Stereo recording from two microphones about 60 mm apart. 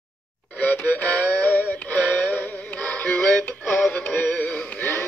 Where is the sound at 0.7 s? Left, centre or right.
Left.